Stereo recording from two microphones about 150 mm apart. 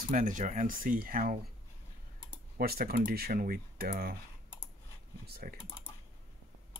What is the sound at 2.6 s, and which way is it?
Speech, 90° right.